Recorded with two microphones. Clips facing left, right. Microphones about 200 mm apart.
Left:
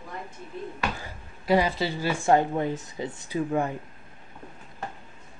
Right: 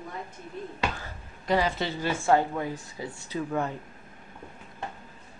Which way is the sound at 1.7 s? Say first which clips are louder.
Left 2 dB; 10° left (ahead or behind).